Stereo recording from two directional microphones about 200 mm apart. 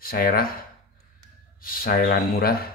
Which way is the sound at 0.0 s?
45° left (ahead or behind).